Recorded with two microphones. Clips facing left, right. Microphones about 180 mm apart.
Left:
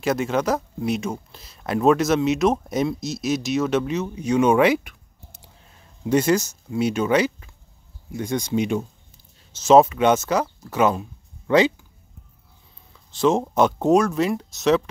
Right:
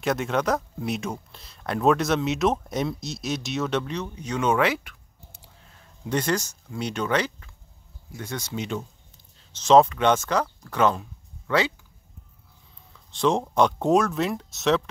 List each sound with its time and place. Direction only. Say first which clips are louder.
0.0 s speech: left 3 dB; centre (ahead or behind); by 11.7 s 20° left (ahead or behind)
13.1 s speech: left 3 dB; centre (ahead or behind)